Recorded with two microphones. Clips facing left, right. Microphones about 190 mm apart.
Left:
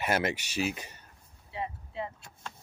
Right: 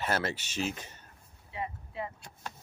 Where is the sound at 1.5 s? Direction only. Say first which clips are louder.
Left 1 dB; 25° left (ahead or behind).